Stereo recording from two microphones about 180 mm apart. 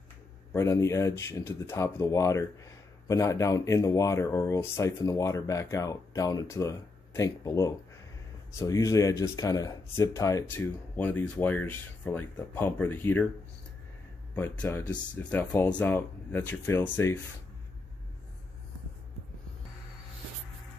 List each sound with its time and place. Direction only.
0.5 s speech: 15° left (ahead or behind)
14.3 s speech: 10° left (ahead or behind)